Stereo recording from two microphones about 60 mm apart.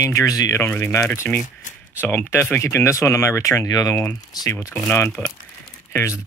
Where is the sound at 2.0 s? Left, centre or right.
Left.